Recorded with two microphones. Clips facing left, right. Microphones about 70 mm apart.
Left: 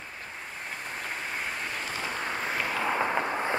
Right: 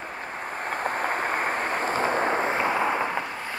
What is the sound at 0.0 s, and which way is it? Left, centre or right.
Vehicle, right.